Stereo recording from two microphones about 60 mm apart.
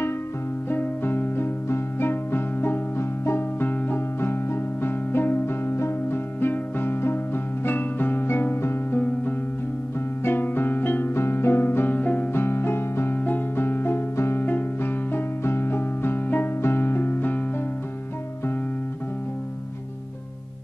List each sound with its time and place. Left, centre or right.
0.7 s music: left
12.3 s keyboard: left
13.2 s music: left